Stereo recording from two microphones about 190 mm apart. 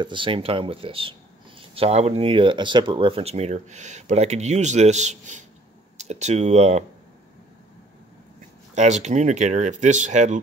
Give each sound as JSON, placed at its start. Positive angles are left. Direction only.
{"t": 0.0, "sound": "speech", "side_deg": -25}
{"t": 8.7, "sound": "speech", "side_deg": -35}